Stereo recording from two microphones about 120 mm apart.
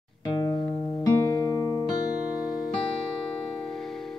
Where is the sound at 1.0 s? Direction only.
30° left (ahead or behind).